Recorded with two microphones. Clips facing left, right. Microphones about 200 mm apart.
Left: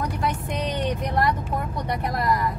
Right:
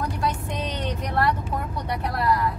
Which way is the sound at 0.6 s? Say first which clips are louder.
Left 3 dB; 15° left (ahead or behind).